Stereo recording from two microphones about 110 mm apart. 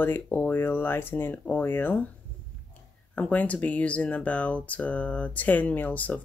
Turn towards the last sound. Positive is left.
turn(degrees=15)  # may be behind; listen again after turning